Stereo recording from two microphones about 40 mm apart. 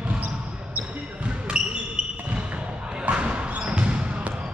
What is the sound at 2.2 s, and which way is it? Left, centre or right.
Basketball bounce, right.